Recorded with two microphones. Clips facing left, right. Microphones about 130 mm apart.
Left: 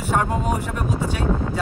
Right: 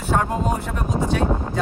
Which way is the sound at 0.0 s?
10° left (ahead or behind).